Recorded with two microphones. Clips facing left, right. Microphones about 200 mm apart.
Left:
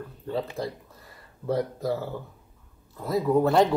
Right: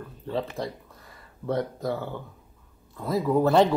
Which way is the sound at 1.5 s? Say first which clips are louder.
Left 1 dB; 5° left (ahead or behind).